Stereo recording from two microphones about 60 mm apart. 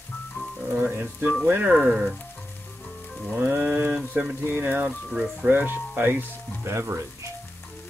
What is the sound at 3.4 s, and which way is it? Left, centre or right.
Speech, right.